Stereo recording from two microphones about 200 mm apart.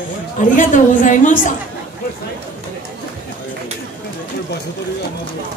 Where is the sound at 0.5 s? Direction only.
40° left (ahead or behind).